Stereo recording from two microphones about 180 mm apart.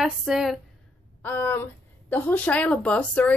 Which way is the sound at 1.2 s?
10° left (ahead or behind).